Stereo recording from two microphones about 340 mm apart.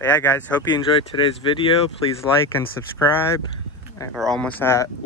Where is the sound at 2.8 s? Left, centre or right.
Centre.